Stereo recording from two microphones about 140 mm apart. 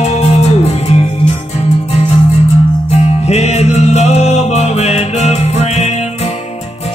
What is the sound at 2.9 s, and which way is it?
Music, 50° left (ahead or behind).